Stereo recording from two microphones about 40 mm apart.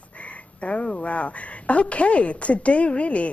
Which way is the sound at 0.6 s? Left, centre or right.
Left.